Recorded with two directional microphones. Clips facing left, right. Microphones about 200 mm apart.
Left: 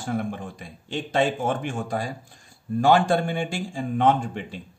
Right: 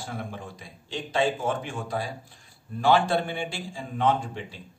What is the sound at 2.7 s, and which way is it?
Speech, 45° left (ahead or behind).